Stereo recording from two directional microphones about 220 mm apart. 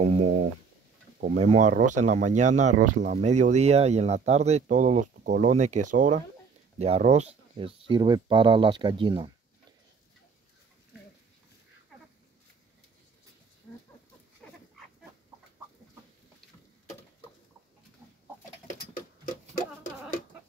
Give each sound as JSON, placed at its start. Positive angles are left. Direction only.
{"t": 0.0, "sound": "speech", "side_deg": -30}
{"t": 14.4, "sound": "a sound", "side_deg": 5}
{"t": 18.7, "sound": "pigeon", "side_deg": 35}